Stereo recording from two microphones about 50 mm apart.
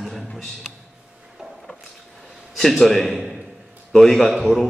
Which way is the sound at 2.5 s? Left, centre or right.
Centre.